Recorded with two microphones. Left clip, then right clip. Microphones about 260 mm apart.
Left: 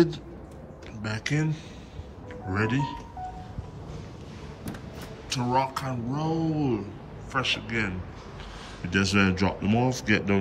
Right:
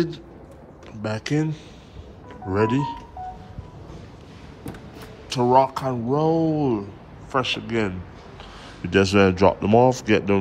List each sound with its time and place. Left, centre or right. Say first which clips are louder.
1.0 s speech: right 5 dB; centre
5.3 s speech: right 8 dB; centre